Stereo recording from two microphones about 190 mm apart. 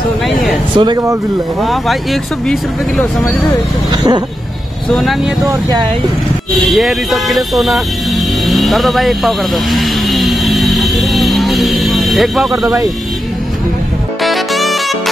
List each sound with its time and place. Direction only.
0.7 s speech: 20° right (ahead or behind)
1.6 s speech: centre (ahead or behind)
3.9 s vehicle: 25° right (ahead or behind)
4.9 s speech: centre (ahead or behind)
5.5 s speech: 20° right (ahead or behind)
6.7 s speech: centre (ahead or behind)
8.5 s vehicle: centre (ahead or behind)
14.2 s saxophone: centre (ahead or behind)